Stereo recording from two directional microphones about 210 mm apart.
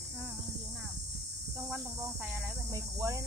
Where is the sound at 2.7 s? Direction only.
15° right (ahead or behind).